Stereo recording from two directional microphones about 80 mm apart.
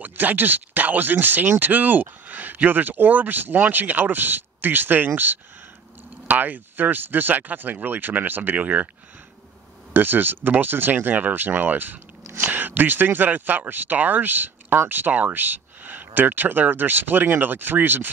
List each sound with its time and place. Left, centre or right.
0.0 s speech: right
9.9 s speech: right